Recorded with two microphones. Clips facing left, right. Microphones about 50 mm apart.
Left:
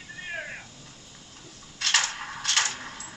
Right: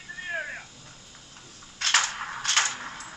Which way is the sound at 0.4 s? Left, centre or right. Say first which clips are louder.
Right 2 dB; centre.